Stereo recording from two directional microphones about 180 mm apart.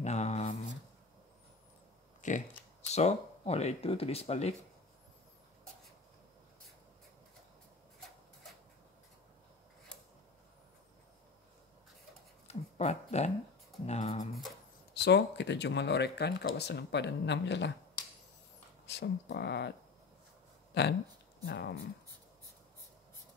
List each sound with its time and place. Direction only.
0.0 s a sound: 40° left (ahead or behind)
2.2 s speech: 45° left (ahead or behind)
12.4 s a sound: 35° left (ahead or behind)
13.8 s speech: 40° left (ahead or behind)
15.0 s speech: 70° left (ahead or behind)
18.9 s speech: 70° left (ahead or behind)
20.7 s speech: 65° left (ahead or behind)